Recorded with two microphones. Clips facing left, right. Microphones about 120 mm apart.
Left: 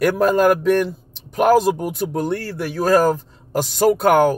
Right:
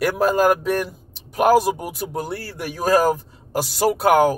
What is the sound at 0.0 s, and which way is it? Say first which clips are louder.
A man's voice: left 2 dB; 5° right (ahead or behind).